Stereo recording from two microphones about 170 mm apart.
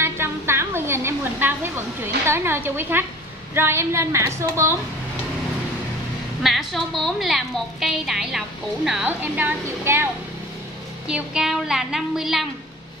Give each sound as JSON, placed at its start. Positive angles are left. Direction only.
{"t": 0.0, "sound": "a sound", "side_deg": -15}
{"t": 3.5, "sound": "a woman's voice", "side_deg": -15}
{"t": 6.4, "sound": "a woman's voice", "side_deg": 0}
{"t": 11.1, "sound": "a woman's voice", "side_deg": -5}